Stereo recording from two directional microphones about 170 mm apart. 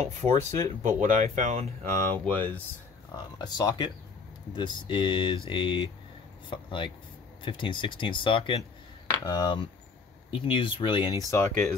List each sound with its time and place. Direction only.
0.0 s speech: 40° right (ahead or behind)
1.8 s speech: 10° left (ahead or behind)
3.3 s speech: 25° left (ahead or behind)
11.2 s speech: 15° left (ahead or behind)